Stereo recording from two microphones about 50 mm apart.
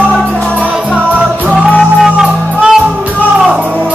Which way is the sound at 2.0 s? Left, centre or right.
Centre.